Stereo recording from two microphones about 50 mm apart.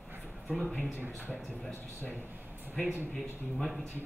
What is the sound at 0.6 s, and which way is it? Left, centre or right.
Speech, left.